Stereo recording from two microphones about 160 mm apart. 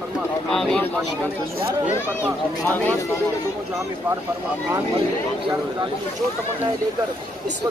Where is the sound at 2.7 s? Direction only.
10° left (ahead or behind).